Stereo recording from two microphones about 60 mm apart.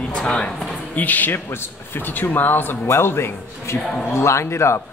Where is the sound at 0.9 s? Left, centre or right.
Left.